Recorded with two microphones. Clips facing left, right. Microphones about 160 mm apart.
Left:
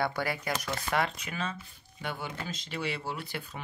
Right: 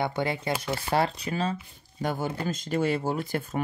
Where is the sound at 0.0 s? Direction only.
25° right (ahead or behind).